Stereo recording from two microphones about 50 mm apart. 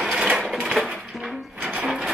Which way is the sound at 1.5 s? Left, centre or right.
Right.